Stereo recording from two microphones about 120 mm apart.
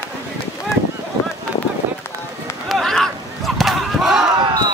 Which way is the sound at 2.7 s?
Centre (ahead or behind).